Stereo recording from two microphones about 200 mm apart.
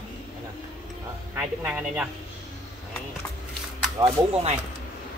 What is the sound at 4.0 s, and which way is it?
Speech, 30° right (ahead or behind).